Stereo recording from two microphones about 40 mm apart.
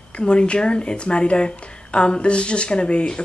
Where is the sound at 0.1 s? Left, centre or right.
Left.